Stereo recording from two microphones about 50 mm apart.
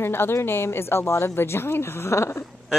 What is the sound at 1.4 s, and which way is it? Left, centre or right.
A woman's voice, left.